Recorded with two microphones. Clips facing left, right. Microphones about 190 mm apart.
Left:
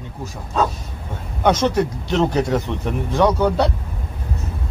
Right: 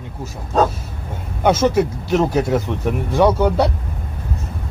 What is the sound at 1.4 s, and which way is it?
Speech, 5° right (ahead or behind).